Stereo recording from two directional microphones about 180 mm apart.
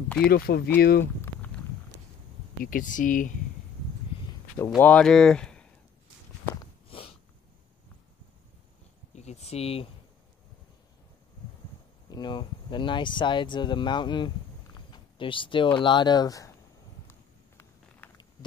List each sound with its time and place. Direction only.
0.3 s speech: 60° left (ahead or behind)
2.6 s speech: 50° left (ahead or behind)
4.6 s speech: 15° left (ahead or behind)
6.9 s a sound: 30° left (ahead or behind)
9.1 s speech: 40° left (ahead or behind)
12.1 s speech: 25° left (ahead or behind)
17.1 s walk: 10° left (ahead or behind)